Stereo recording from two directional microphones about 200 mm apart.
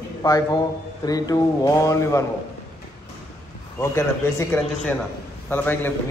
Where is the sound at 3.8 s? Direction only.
15° left (ahead or behind).